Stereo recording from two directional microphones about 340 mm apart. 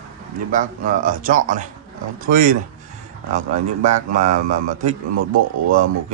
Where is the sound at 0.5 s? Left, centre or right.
Right.